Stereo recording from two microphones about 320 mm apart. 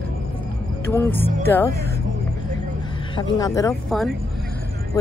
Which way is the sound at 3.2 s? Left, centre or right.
Centre.